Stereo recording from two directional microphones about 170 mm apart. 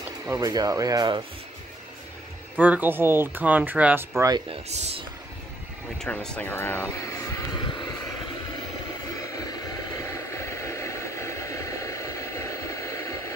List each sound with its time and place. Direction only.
0.3 s speech: 20° right (ahead or behind)
2.6 s speech: 10° right (ahead or behind)
4.5 s speech: 40° right (ahead or behind)
5.9 s vehicle: 5° left (ahead or behind); by 7.9 s 20° left (ahead or behind)
9.2 s a sound: 20° left (ahead or behind)